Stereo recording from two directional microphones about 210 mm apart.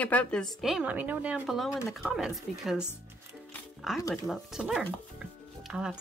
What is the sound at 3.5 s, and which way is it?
Music, centre (ahead or behind).